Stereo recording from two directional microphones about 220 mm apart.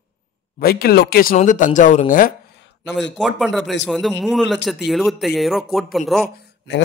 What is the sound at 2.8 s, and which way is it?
Speech, 55° left (ahead or behind).